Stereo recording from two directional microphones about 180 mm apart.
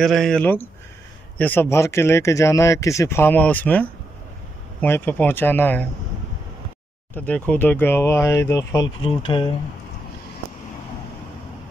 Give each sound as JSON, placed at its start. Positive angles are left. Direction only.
{"t": 0.0, "sound": "speech", "side_deg": 0}
{"t": 7.2, "sound": "speech", "side_deg": 10}
{"t": 9.0, "sound": "speech", "side_deg": 25}